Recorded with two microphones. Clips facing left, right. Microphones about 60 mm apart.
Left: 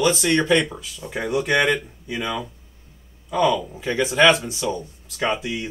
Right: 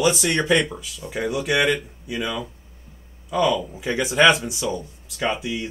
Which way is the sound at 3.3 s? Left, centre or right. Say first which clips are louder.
Left 1 dB; left.